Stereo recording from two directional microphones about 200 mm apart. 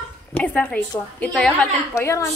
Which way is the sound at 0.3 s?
5° left (ahead or behind).